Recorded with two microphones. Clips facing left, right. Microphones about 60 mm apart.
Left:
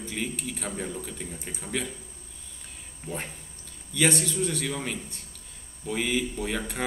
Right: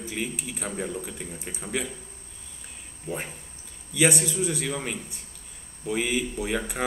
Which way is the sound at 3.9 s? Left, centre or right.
Centre.